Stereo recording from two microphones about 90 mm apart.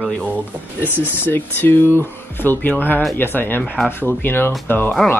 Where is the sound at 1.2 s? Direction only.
25° left (ahead or behind).